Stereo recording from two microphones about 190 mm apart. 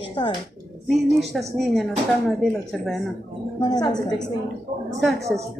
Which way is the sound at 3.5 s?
20° left (ahead or behind).